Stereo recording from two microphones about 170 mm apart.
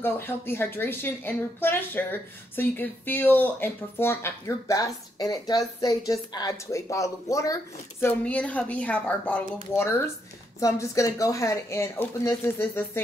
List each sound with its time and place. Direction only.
0.0 s speech: 10° left (ahead or behind)